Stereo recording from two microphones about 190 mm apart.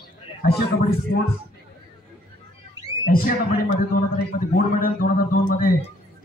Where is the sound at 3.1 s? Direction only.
50° left (ahead or behind).